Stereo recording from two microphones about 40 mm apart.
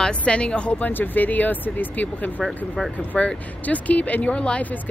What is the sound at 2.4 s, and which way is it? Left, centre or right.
Speech, centre.